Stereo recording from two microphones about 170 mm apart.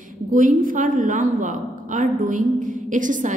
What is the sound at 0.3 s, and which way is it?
A woman's voice, 55° right (ahead or behind).